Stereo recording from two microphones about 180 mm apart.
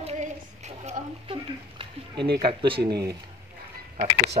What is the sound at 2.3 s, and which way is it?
Speech, 25° right (ahead or behind).